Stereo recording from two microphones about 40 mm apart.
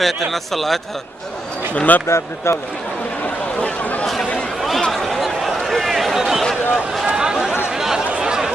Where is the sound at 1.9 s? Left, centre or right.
Left.